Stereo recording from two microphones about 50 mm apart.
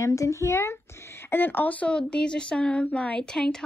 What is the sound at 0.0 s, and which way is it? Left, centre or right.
A child's voice, left.